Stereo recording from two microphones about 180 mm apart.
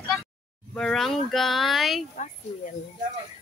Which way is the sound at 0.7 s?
5° left (ahead or behind).